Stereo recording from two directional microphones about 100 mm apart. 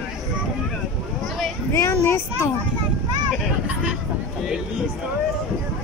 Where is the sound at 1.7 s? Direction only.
25° left (ahead or behind).